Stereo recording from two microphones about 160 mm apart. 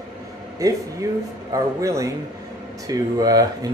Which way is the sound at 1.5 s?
20° right (ahead or behind).